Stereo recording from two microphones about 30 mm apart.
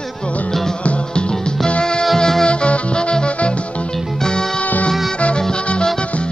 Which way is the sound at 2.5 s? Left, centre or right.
Left.